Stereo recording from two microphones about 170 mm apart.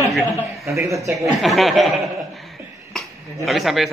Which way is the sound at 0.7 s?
15° right (ahead or behind).